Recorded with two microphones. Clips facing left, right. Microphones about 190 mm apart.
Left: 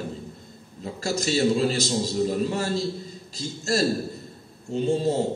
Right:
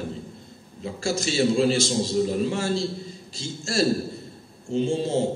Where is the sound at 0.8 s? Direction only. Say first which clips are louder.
Right 1 dB; 40° left (ahead or behind).